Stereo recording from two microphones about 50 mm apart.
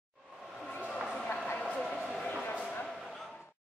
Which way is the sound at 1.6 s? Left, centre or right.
Centre.